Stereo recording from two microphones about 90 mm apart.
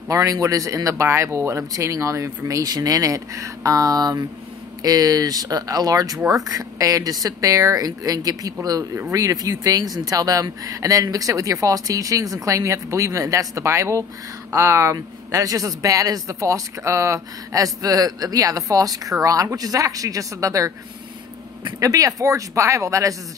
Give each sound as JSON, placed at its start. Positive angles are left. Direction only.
{"t": 0.1, "sound": "speech", "side_deg": -40}
{"t": 21.7, "sound": "speech", "side_deg": -40}